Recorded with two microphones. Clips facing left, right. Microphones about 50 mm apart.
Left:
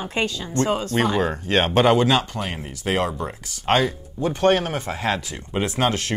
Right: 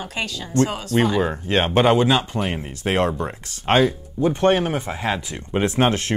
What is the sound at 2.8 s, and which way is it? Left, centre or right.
Speech, right.